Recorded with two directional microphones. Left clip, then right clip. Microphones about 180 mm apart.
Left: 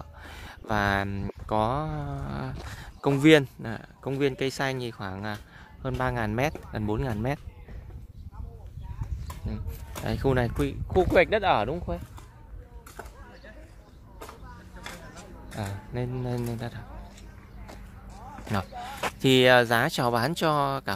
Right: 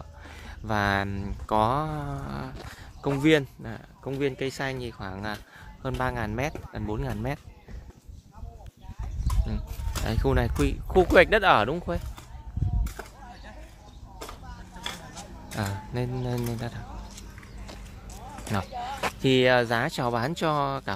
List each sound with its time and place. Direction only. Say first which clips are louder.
0.2 s speech: left 1 dB; 15° left (ahead or behind)
2.7 s speech: left 3 dB; 40° left (ahead or behind)
10.0 s speech: left 1 dB; 10° left (ahead or behind)
10.6 s speech: right 2 dB; 5° right (ahead or behind)
12.8 s a sound: right 3 dB; 55° right (ahead or behind)
14.8 s vehicle: right 5 dB; 50° right (ahead or behind)
15.5 s speech: right 3 dB; 5° right (ahead or behind)
18.9 s speech: left 2 dB; 10° left (ahead or behind)